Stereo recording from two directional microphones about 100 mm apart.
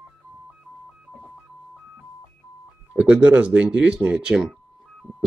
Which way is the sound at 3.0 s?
15° right (ahead or behind).